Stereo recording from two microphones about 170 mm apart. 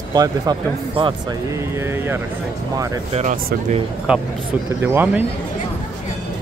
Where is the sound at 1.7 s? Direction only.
15° right (ahead or behind).